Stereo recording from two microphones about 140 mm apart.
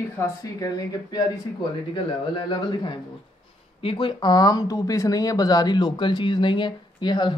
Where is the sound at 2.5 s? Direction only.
35° left (ahead or behind).